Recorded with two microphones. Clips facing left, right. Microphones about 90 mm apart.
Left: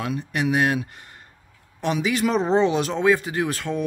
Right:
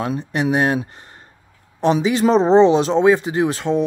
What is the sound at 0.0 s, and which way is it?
Speech, 30° right (ahead or behind).